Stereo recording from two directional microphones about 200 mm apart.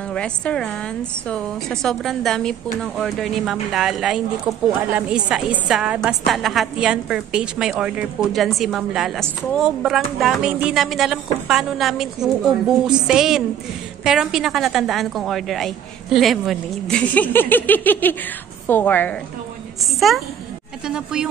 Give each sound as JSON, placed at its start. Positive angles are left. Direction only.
{"t": 0.1, "sound": "a woman's voice", "side_deg": 5}